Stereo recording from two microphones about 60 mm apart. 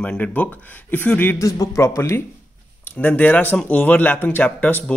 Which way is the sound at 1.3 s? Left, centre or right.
Left.